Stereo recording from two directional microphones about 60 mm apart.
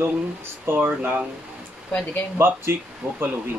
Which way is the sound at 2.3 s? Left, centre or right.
Right.